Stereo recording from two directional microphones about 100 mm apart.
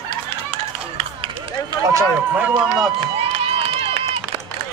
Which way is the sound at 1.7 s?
35° right (ahead or behind).